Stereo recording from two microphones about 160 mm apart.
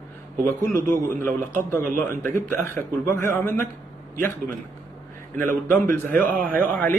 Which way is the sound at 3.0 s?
20° left (ahead or behind).